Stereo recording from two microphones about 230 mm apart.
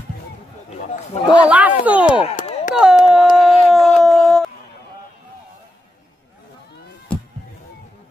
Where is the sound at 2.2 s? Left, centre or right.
Left.